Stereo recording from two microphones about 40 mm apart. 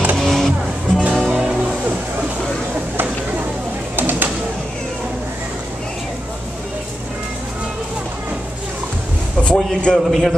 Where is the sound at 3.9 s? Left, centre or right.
Right.